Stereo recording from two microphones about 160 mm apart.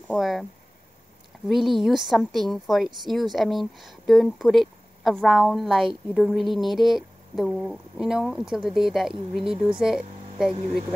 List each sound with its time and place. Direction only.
0.2 s speech: centre (ahead or behind)
1.5 s speech: centre (ahead or behind)